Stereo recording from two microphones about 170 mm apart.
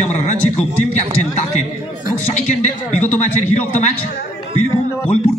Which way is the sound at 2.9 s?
10° left (ahead or behind).